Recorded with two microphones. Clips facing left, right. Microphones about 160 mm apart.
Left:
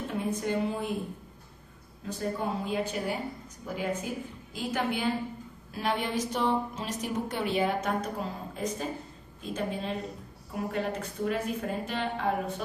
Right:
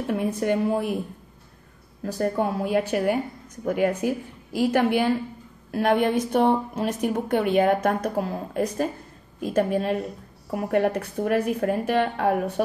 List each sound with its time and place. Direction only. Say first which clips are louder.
0.0 s a woman's voice: right 6 dB; 65° right (ahead or behind)
2.1 s a woman's voice: right 7 dB; 60° right (ahead or behind)